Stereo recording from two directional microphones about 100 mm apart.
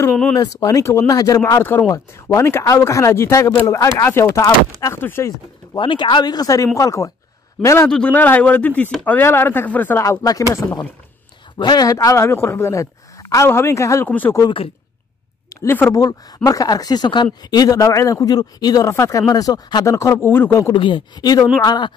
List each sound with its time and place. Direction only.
0.4 s speech: 35° left (ahead or behind)
1.4 s speech: 25° left (ahead or behind)
5.8 s speech: 55° left (ahead or behind); by 7.9 s 30° left (ahead or behind)
7.9 s speech: 15° left (ahead or behind)
10.0 s speech: 35° left (ahead or behind)
11.5 s speech: 45° left (ahead or behind)
14.0 s speech: 20° left (ahead or behind)
15.6 s speech: 20° left (ahead or behind)
15.9 s speech: 40° left (ahead or behind); by 20.6 s 20° left (ahead or behind)
20.7 s speech: 55° left (ahead or behind)